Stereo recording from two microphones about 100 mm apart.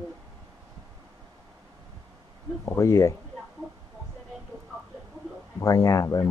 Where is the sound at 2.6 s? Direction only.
30° left (ahead or behind).